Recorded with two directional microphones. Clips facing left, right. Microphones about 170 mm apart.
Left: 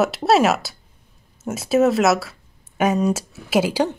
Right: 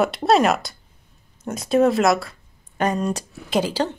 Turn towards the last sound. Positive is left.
turn(degrees=10)  # may be behind; listen again after turning